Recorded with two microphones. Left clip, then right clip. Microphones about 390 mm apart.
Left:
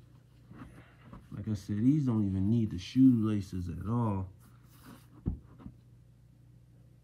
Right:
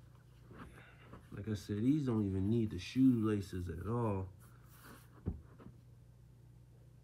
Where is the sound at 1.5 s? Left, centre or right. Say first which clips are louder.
Left 5 dB; left.